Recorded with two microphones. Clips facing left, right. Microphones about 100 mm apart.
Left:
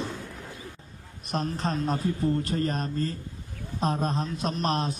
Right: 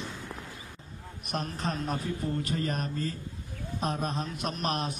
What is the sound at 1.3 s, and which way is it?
A man's voice, 35° left (ahead or behind).